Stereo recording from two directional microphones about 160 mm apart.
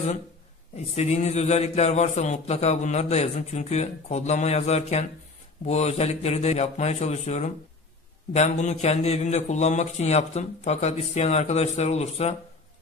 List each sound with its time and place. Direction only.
0.7 s a man's voice: 45° left (ahead or behind)